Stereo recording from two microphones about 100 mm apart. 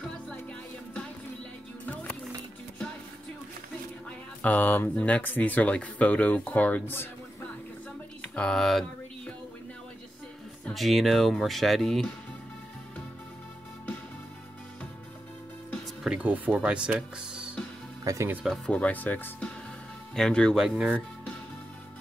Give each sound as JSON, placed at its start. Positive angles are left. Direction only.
{"t": 4.4, "sound": "speech", "side_deg": 15}
{"t": 8.2, "sound": "a sound", "side_deg": 10}
{"t": 10.6, "sound": "speech", "side_deg": 0}
{"t": 16.0, "sound": "speech", "side_deg": -10}
{"t": 18.0, "sound": "speech", "side_deg": -30}
{"t": 18.7, "sound": "speech", "side_deg": 15}
{"t": 20.6, "sound": "speech", "side_deg": -5}